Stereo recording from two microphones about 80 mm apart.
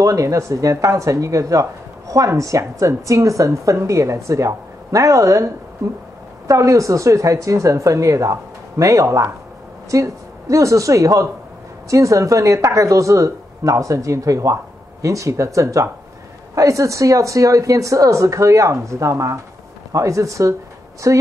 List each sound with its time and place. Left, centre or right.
0.0 s a woman's voice: right